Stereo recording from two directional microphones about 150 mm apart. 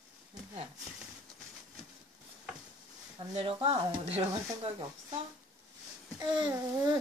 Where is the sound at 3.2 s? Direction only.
40° right (ahead or behind).